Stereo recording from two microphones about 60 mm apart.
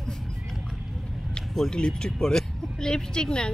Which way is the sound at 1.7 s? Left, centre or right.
Centre.